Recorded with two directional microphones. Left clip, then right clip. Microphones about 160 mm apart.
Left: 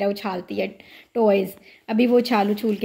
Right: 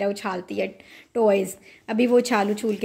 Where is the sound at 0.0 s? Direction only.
Centre (ahead or behind).